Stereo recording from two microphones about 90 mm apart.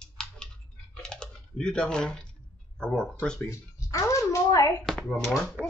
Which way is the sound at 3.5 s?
35° left (ahead or behind).